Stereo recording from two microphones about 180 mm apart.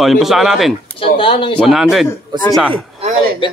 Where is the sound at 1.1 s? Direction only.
30° left (ahead or behind).